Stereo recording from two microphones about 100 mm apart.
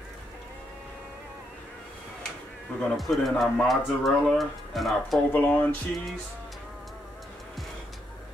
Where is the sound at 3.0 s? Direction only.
Centre (ahead or behind).